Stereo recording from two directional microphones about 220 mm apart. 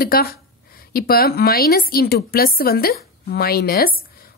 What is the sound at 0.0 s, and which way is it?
A woman's voice, 45° left (ahead or behind).